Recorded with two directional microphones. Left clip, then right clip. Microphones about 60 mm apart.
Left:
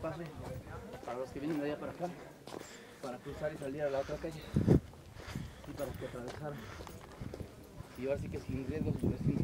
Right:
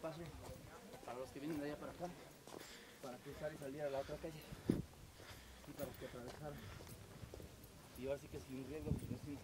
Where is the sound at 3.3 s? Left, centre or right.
Centre.